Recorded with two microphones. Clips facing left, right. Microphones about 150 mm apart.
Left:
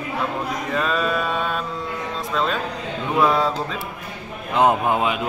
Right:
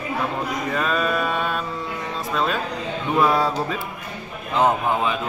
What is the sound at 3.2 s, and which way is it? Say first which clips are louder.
Speech: left 1 dB; centre (ahead or behind).